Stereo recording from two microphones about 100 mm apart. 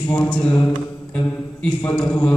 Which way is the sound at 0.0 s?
15° left (ahead or behind).